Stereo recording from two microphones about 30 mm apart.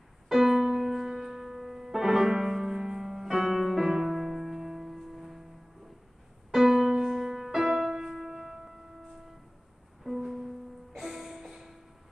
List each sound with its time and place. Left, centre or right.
0.3 s music: centre
6.5 s music: centre
10.0 s music: centre